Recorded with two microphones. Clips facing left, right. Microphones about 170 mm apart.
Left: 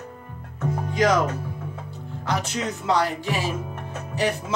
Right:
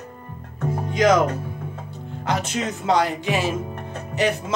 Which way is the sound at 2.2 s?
20° right (ahead or behind).